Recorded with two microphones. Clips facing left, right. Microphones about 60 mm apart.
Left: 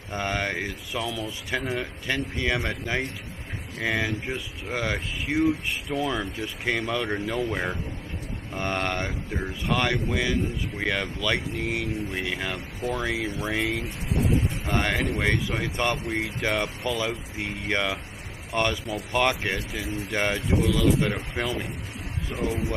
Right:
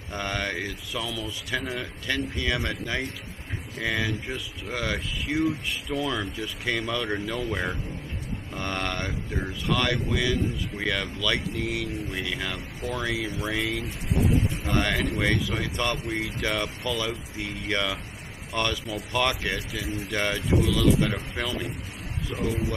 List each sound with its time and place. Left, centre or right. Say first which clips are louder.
0.1 s speech: left 2 dB; centre